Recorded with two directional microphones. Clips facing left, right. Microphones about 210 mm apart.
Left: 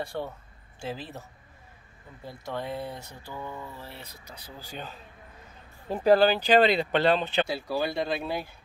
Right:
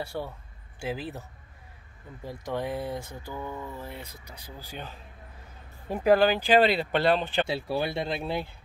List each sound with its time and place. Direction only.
0.0 s speech: 10° right (ahead or behind)
2.2 s speech: 15° right (ahead or behind)
3.0 s mantra: 50° right (ahead or behind)
3.3 s speech: 15° right (ahead or behind)
7.4 s speech: 25° right (ahead or behind)